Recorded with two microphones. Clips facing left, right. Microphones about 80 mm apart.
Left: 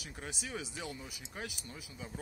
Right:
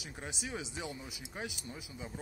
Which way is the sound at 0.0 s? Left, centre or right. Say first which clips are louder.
Right 1 dB; centre.